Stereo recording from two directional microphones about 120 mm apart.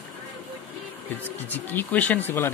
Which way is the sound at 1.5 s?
15° left (ahead or behind).